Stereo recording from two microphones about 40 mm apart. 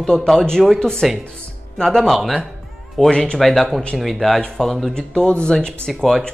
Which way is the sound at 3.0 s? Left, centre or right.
Left.